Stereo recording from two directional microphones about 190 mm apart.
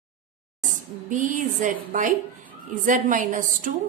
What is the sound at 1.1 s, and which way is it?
A woman's voice, 45° right (ahead or behind).